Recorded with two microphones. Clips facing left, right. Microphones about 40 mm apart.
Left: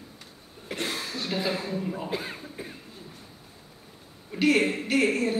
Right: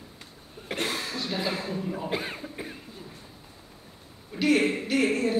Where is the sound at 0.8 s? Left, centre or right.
Right.